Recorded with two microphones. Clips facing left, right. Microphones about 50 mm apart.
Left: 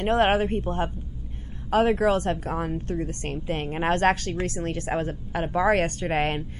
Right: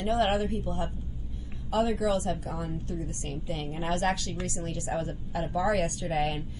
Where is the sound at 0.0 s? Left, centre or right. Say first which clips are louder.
Left 5 dB; left.